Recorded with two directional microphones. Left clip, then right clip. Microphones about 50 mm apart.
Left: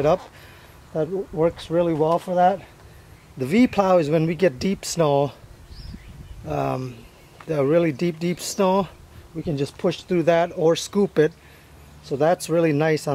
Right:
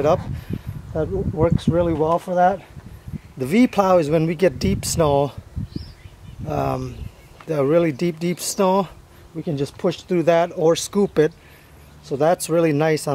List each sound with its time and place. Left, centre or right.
0.0 s speech: centre
3.3 s speech: centre
6.4 s speech: centre
10.2 s speech: centre